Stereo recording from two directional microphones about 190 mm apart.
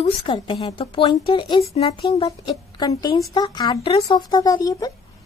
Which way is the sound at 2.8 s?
20° left (ahead or behind).